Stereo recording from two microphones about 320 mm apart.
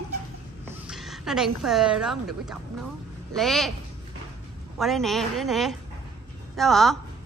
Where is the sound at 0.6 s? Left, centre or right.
Centre.